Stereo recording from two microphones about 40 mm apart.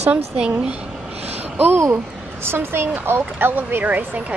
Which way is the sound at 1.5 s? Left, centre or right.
Right.